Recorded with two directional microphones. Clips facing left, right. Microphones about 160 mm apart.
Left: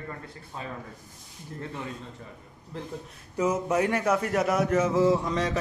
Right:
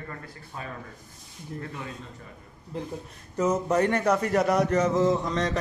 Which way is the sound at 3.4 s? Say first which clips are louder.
Right 1 dB; 10° left (ahead or behind).